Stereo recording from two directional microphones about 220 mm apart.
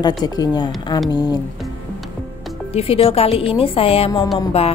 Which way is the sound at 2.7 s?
25° left (ahead or behind).